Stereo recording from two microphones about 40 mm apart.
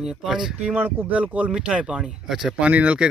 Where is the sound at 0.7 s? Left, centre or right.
Right.